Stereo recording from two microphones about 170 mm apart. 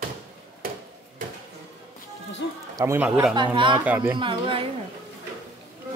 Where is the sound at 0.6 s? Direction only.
60° right (ahead or behind).